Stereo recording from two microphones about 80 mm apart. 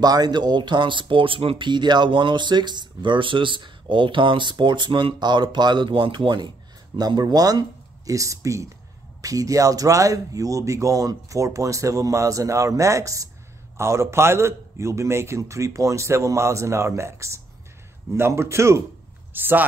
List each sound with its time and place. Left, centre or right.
0.0 s speech: right
7.0 s speech: right
8.1 s a man's voice: right
19.3 s speech: right